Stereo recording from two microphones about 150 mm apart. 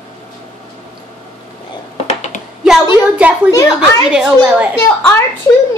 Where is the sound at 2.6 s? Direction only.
5° right (ahead or behind).